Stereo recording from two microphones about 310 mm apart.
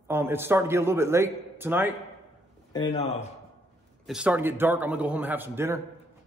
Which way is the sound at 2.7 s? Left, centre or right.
Centre.